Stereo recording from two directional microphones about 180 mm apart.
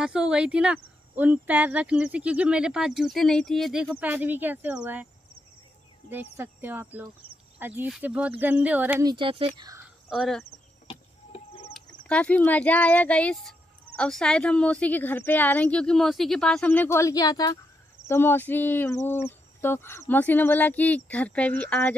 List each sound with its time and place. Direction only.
0.0 s speech: 5° right (ahead or behind)
6.0 s speech: 10° right (ahead or behind)
9.0 s speech: 25° right (ahead or behind)
10.0 s cricket: centre (ahead or behind)
10.9 s a sound: 30° left (ahead or behind)
11.7 s speech: 5° left (ahead or behind)